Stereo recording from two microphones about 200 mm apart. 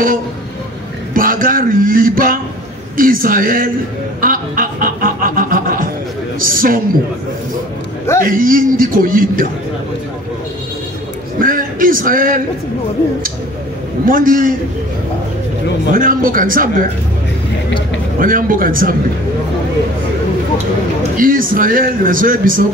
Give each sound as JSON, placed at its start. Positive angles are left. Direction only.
{"t": 1.1, "sound": "a man's voice", "side_deg": -45}
{"t": 4.2, "sound": "a sound", "side_deg": -45}
{"t": 6.4, "sound": "a man's voice", "side_deg": -45}
{"t": 8.3, "sound": "a man's voice", "side_deg": -45}
{"t": 11.4, "sound": "a man's voice", "side_deg": -45}
{"t": 14.0, "sound": "a man's voice", "side_deg": -45}
{"t": 15.9, "sound": "a man's voice", "side_deg": -45}
{"t": 18.2, "sound": "a man's voice", "side_deg": -45}
{"t": 21.2, "sound": "a man's voice", "side_deg": -45}